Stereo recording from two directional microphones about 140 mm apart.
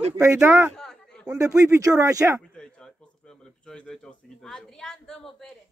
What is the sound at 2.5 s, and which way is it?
Speech, 5° left (ahead or behind).